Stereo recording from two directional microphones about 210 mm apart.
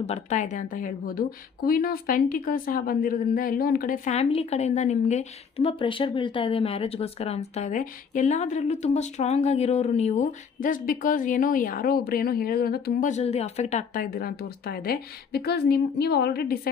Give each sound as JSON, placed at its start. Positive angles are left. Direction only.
{"t": 0.0, "sound": "a woman's voice", "side_deg": 35}
{"t": 13.1, "sound": "speech", "side_deg": 30}